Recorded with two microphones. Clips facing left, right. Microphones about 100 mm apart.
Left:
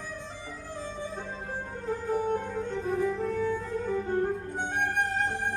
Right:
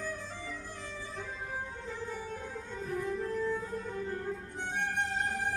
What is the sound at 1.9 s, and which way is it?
Music, 55° left (ahead or behind).